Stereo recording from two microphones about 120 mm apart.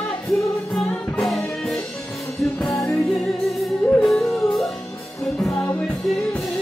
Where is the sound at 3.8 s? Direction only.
25° left (ahead or behind).